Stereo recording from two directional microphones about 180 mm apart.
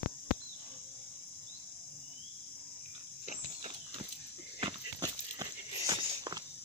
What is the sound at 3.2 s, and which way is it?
Walk, 35° right (ahead or behind).